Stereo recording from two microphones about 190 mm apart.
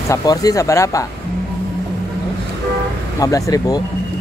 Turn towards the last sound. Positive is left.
turn(degrees=20)  # may be behind; listen again after turning